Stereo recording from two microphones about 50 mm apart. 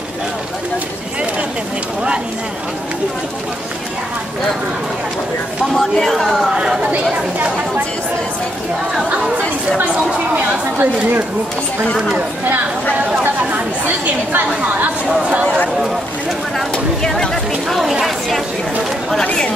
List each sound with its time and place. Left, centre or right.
5.8 s speech: centre
6.5 s speech: centre
10.3 s speech: right
17.6 s speech: centre